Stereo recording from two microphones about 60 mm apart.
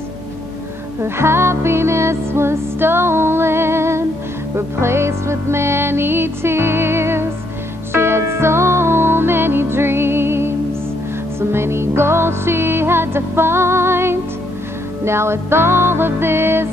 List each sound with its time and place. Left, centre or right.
1.0 s music: right
11.5 s music: right